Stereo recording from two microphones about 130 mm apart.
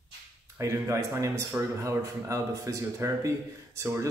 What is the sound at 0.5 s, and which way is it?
Speech, 20° right (ahead or behind).